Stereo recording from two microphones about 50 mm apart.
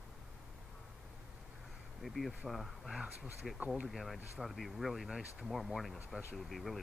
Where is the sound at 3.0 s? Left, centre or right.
Centre.